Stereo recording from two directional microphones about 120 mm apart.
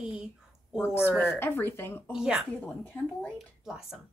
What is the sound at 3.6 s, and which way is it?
Speech, 5° right (ahead or behind).